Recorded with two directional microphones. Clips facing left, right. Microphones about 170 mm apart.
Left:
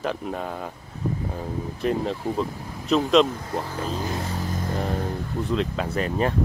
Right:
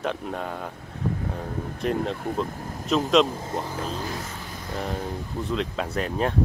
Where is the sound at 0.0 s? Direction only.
Centre (ahead or behind).